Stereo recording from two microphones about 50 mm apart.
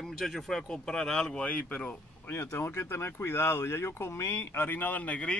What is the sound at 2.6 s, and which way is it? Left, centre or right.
Speech, left.